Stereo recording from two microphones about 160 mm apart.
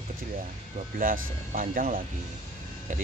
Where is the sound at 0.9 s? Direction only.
60° right (ahead or behind).